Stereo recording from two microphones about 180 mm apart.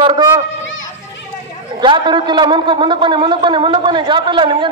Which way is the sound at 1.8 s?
25° right (ahead or behind).